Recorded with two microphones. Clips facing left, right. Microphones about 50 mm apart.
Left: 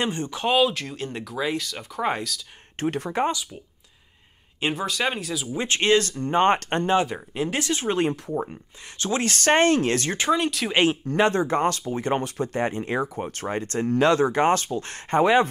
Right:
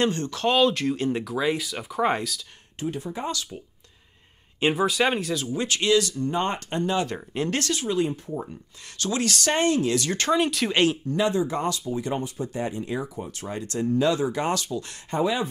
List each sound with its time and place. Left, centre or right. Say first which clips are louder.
0.0 s speech: right 2 dB; centre
2.8 s speech: left 6 dB; left
4.6 s speech: right 4 dB; centre
5.5 s speech: left 2 dB; left
6.6 s speech: left 2 dB; left
7.1 s speech: even; centre
7.7 s speech: left 2 dB; left
10.3 s speech: right 1 dB; centre
10.7 s speech: left 3 dB; left
11.1 s speech: left 3 dB; left
13.8 s speech: left 3 dB; left